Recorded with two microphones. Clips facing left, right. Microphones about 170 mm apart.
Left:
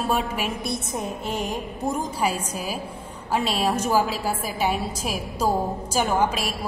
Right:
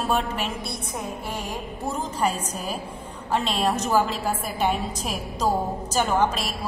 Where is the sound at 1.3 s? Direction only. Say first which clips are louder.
Left 3 dB; 20° left (ahead or behind).